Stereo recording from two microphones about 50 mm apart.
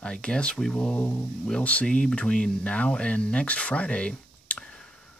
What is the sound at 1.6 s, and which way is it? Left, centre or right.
Speech, left.